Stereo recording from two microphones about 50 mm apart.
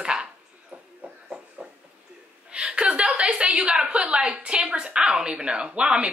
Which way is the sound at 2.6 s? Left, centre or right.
Centre.